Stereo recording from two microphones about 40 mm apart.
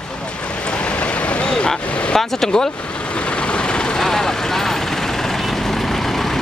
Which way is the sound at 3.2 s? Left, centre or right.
Left.